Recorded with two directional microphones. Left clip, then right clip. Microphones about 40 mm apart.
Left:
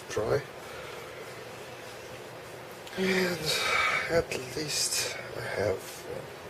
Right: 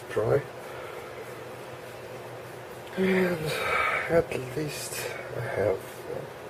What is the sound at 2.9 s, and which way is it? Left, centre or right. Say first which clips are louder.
Speech: right 3 dB; left.